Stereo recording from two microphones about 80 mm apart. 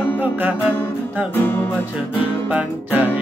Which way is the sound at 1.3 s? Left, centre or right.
Left.